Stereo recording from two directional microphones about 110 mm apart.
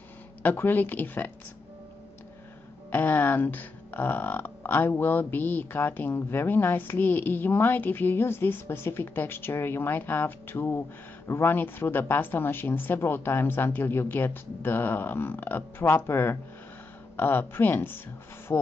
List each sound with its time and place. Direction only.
0.4 s speech: 15° left (ahead or behind)
2.9 s speech: 15° left (ahead or behind)